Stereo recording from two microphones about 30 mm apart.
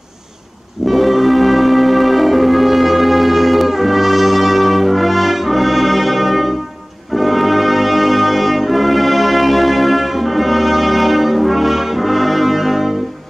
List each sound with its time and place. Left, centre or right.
0.8 s music: centre
7.2 s brass instrument: centre